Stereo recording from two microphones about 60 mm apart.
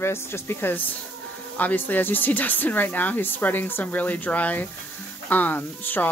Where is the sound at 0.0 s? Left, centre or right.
Left.